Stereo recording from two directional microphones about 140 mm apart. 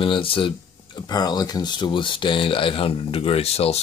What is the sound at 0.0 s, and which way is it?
Speech, 40° left (ahead or behind).